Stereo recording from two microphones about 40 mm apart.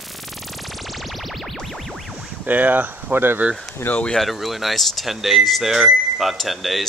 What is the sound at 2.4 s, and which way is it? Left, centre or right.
Speech, right.